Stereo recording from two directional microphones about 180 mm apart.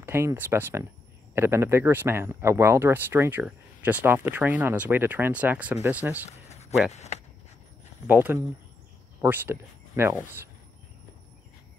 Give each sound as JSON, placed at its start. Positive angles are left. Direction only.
{"t": 0.0, "sound": "speech", "side_deg": -15}
{"t": 6.9, "sound": "speech", "side_deg": 40}
{"t": 8.1, "sound": "speech", "side_deg": -10}